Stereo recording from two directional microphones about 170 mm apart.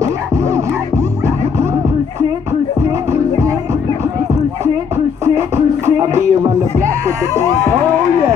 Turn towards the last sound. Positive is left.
turn(degrees=-15)  # may be behind; listen again after turning